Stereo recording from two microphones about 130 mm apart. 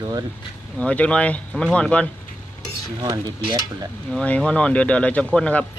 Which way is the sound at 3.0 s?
35° right (ahead or behind).